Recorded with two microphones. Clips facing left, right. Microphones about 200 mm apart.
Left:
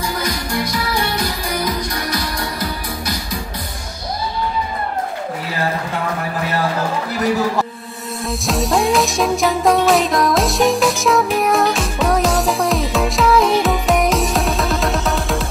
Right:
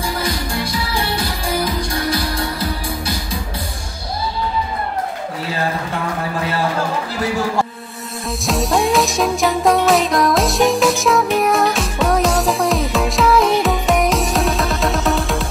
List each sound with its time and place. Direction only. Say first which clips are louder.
0.2 s music: even; 30° right (ahead or behind)
8.3 s music: even; centre (ahead or behind)